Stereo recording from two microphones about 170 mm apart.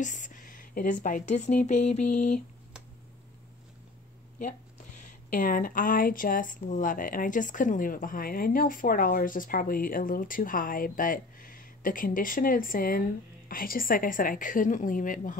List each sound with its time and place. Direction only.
0.0 s a woman's voice: 50° left (ahead or behind)
5.3 s a woman's voice: 50° left (ahead or behind)